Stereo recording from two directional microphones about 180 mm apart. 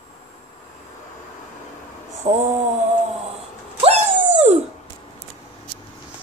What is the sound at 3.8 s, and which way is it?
Dog, 35° right (ahead or behind).